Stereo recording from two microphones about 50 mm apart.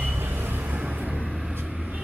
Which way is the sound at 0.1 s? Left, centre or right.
Right.